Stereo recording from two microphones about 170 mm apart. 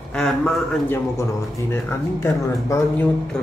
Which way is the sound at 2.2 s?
15° left (ahead or behind).